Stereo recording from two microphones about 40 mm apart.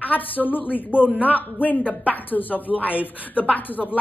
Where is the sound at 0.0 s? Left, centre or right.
Left.